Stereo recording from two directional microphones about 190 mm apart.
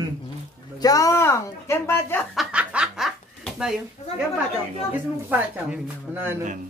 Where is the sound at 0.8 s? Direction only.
20° left (ahead or behind).